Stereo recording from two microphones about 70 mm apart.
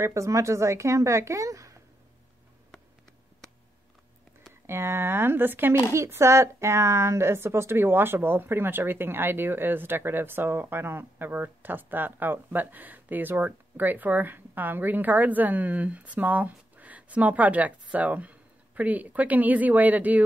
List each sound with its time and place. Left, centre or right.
0.0 s speech: right
4.6 s speech: right
5.9 s speech: right